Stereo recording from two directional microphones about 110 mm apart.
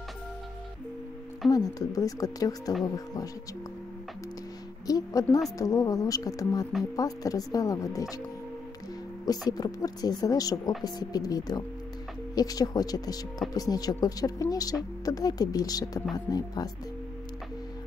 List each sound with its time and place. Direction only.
1.5 s speech: 35° left (ahead or behind)
4.8 s a woman's voice: 35° left (ahead or behind)
9.5 s speech: 35° left (ahead or behind)